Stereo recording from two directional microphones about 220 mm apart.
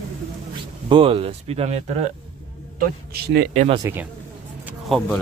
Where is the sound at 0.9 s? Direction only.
25° right (ahead or behind).